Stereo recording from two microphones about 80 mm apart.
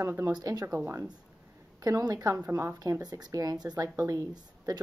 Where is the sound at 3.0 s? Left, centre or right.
Right.